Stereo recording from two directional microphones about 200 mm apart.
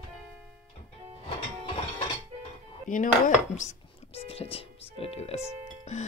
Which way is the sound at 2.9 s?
40° left (ahead or behind).